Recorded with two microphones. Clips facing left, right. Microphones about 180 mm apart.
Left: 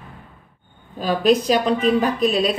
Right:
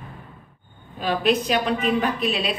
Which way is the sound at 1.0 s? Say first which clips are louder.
Left 4 dB; 40° left (ahead or behind).